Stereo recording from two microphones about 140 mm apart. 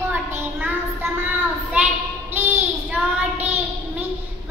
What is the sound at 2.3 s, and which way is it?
Child singing, 15° right (ahead or behind).